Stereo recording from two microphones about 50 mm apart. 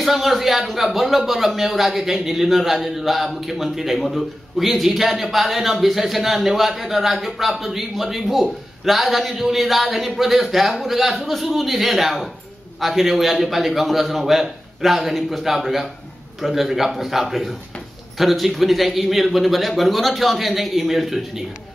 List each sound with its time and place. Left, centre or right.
0.0 s a man's voice: centre